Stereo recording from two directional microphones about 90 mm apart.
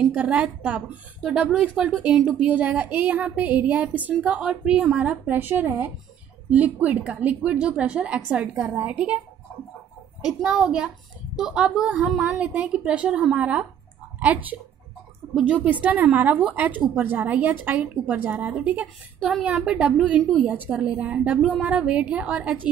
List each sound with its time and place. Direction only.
0.0 s a woman's voice: 15° right (ahead or behind)
10.2 s a woman's voice: 5° right (ahead or behind)